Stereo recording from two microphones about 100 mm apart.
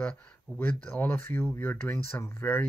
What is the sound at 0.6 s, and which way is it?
Speech, 15° left (ahead or behind).